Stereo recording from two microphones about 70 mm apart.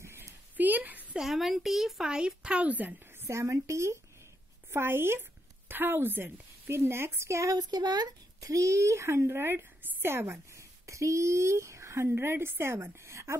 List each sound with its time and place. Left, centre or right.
0.0 s a sound: right
0.6 s a sound: right
1.1 s speech: centre; by 3.0 s right
3.2 s a woman's voice: right
7.7 s speech: right
8.4 s a woman's voice: right